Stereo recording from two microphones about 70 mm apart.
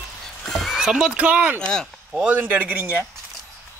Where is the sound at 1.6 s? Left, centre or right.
Centre.